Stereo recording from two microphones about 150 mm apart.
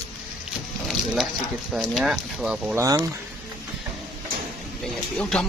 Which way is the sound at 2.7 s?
25° right (ahead or behind).